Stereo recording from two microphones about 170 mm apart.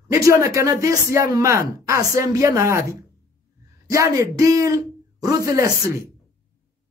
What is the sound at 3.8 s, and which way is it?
A man's voice, 20° right (ahead or behind).